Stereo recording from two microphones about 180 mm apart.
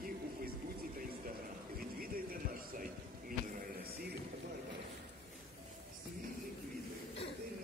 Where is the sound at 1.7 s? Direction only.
55° right (ahead or behind).